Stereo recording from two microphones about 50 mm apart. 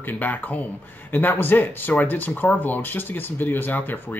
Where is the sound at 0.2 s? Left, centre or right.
Left.